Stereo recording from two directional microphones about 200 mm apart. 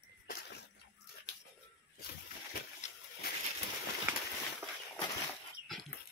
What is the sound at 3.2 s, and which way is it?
Bird, 50° left (ahead or behind).